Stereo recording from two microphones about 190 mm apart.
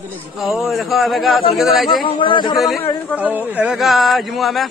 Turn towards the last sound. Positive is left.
turn(degrees=0)  # may be behind; listen again after turning